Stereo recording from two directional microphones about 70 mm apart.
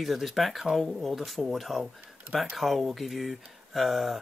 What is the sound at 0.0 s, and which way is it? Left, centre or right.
Speech, centre.